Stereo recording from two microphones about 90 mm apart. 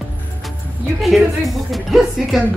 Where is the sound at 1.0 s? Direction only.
Centre (ahead or behind).